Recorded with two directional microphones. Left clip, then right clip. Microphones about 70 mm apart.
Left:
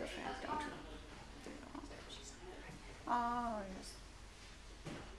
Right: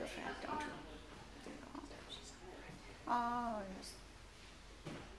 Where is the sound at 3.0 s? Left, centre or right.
Centre.